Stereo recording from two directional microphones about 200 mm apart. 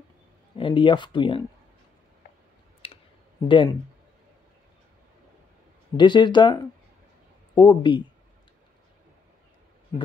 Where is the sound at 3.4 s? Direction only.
25° left (ahead or behind).